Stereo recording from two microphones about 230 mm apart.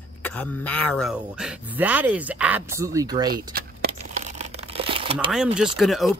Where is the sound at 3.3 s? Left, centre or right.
Right.